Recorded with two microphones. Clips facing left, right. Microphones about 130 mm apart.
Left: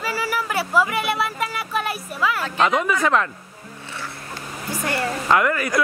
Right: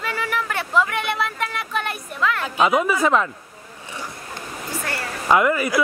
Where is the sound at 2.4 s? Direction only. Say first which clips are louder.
Right 3 dB; 10° right (ahead or behind).